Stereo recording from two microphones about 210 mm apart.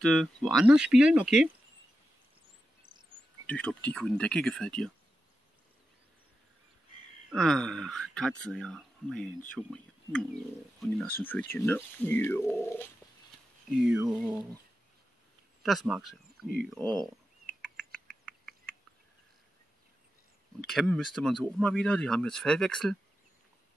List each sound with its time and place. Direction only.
0.0 s speech: centre (ahead or behind)
2.8 s chirp: 20° right (ahead or behind)
3.4 s speech: 5° left (ahead or behind)
7.2 s speech: centre (ahead or behind)
13.7 s speech: centre (ahead or behind)
15.6 s speech: centre (ahead or behind)
17.9 s bird: 5° left (ahead or behind)
20.6 s speech: centre (ahead or behind)